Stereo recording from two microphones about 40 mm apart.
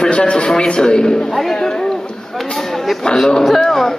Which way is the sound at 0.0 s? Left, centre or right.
Left.